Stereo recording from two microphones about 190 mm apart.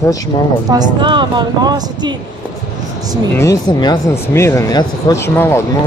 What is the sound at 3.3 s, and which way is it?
Speech, 15° left (ahead or behind).